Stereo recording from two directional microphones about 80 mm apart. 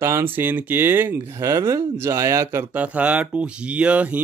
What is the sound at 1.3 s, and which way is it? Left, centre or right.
Speech, right.